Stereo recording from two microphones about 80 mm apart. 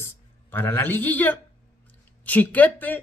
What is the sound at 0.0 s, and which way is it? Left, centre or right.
Speech, left.